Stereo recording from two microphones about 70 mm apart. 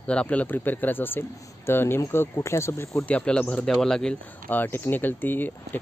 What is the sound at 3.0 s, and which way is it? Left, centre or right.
Speech, centre.